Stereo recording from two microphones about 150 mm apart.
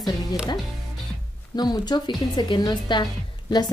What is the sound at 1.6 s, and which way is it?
A woman's voice, 30° left (ahead or behind).